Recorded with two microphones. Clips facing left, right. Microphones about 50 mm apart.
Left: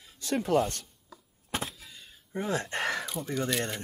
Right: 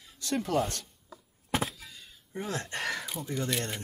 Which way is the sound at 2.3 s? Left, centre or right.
Centre.